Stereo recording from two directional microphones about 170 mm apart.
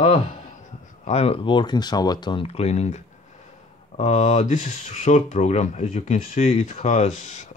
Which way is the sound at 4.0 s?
40° left (ahead or behind).